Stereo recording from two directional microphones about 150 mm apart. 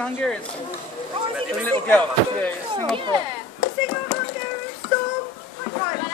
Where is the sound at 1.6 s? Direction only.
10° left (ahead or behind).